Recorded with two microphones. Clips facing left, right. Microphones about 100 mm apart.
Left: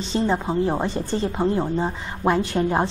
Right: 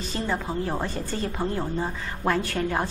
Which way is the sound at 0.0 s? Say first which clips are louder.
Left 6 dB; 25° left (ahead or behind).